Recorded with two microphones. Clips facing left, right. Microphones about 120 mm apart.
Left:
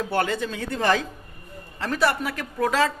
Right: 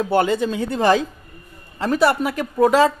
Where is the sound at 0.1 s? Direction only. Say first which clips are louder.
Right 8 dB; 20° right (ahead or behind).